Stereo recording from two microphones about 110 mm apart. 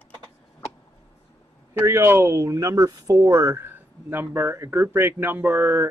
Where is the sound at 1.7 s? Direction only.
25° right (ahead or behind).